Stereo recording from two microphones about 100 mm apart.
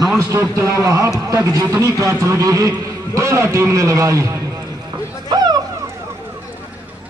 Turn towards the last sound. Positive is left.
turn(degrees=-45)  # may be behind; listen again after turning